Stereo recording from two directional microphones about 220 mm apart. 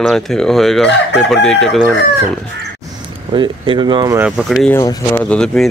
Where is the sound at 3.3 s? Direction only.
20° right (ahead or behind).